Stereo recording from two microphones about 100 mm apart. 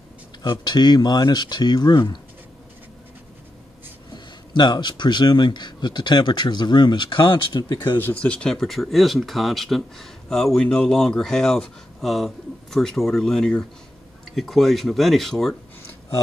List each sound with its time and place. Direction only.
0.4 s speech: 45° left (ahead or behind)
4.1 s speech: 45° left (ahead or behind)
8.0 s speech: 10° left (ahead or behind)